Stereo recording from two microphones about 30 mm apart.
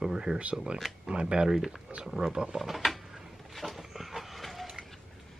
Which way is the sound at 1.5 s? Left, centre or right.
Centre.